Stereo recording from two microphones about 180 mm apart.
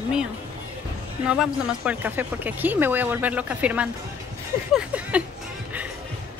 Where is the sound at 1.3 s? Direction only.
5° right (ahead or behind).